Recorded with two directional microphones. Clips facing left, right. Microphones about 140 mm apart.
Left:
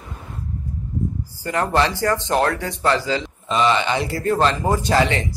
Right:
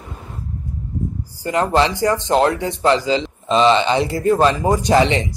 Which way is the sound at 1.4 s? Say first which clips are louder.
Right 3 dB; 20° right (ahead or behind).